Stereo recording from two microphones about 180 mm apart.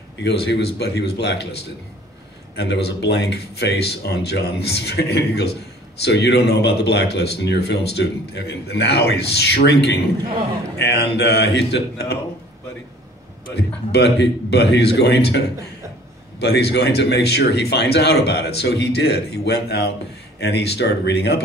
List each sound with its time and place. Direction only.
0.2 s speech: 70° left (ahead or behind)
13.6 s speech: 70° left (ahead or behind)